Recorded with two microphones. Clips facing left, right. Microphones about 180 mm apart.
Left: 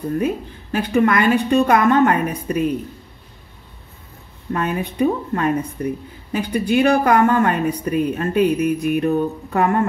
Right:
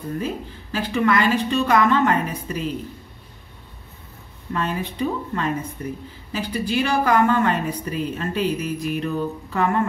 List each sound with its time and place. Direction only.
0.2 s a woman's voice: 55° left (ahead or behind)
4.5 s a woman's voice: 55° left (ahead or behind)